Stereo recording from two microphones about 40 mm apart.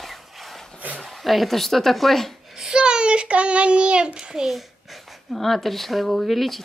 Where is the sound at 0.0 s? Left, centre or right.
Centre.